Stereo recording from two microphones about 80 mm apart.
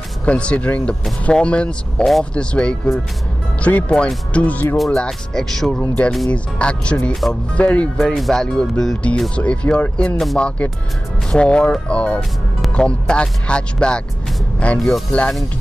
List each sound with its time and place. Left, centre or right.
0.2 s speech: centre
4.7 s speech: centre
8.0 s speech: centre
10.1 s speech: centre
11.3 s speech: centre